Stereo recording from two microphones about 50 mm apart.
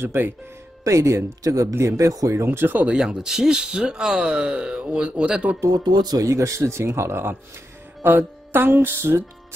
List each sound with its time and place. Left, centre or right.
0.0 s speech: right
0.8 s speech: right
2.5 s speech: right
2.9 s speech: centre
6.2 s speech: right
8.0 s speech: right